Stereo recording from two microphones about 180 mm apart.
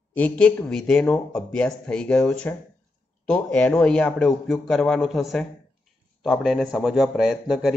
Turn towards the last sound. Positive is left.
turn(degrees=0)  # may be behind; listen again after turning